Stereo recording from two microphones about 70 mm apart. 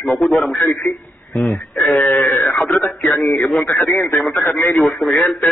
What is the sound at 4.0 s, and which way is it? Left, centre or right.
Speech, left.